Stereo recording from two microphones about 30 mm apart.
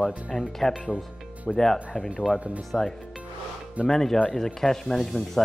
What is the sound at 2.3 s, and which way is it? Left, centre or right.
Speech, right.